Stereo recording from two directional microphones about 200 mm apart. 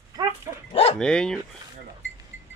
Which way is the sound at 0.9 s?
5° left (ahead or behind).